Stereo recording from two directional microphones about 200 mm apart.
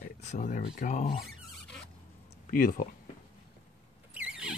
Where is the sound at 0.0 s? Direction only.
35° left (ahead or behind).